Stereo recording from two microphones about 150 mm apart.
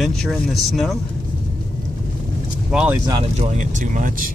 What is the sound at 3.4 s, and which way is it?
Speech, 55° right (ahead or behind).